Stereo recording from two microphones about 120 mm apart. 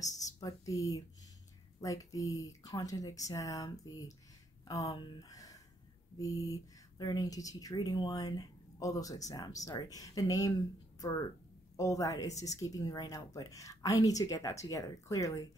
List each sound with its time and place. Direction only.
0.0 s speech: 30° left (ahead or behind)